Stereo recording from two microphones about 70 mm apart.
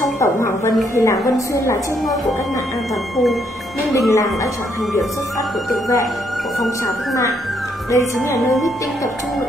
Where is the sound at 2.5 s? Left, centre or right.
Left.